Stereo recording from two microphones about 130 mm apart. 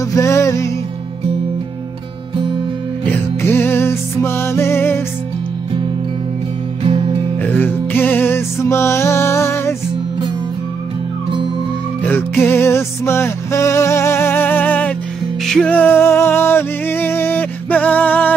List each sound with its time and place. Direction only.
0.1 s music: 20° left (ahead or behind)
3.1 s music: 15° left (ahead or behind)
6.8 s music: 50° right (ahead or behind)
7.4 s music: 15° left (ahead or behind)
12.0 s music: 15° left (ahead or behind)